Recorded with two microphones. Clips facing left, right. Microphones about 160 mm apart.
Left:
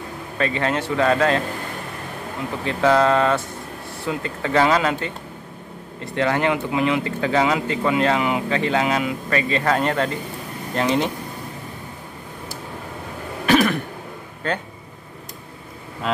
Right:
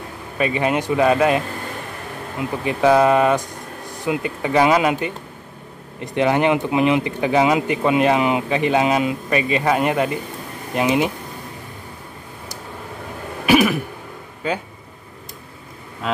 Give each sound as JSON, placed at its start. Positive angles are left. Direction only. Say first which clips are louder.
{"t": 0.4, "sound": "speech", "louder": "right 3 dB", "side_deg": -15}
{"t": 2.6, "sound": "speech", "louder": "right 2 dB", "side_deg": -15}
{"t": 13.5, "sound": "throat clearing", "louder": "right 2 dB", "side_deg": -10}
{"t": 14.4, "sound": "speech", "louder": "right 2 dB", "side_deg": -10}